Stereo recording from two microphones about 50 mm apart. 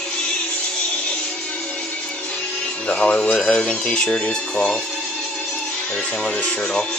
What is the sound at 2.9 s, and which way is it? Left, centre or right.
Speech, left.